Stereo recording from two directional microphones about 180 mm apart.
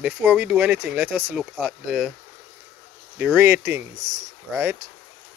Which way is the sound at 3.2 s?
10° right (ahead or behind).